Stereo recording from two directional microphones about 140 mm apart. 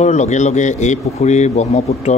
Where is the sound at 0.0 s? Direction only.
55° left (ahead or behind).